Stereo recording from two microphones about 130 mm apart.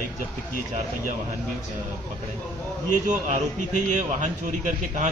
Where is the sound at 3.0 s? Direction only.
70° right (ahead or behind).